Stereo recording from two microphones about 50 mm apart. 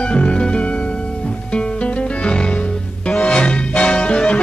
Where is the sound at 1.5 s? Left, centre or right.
Left.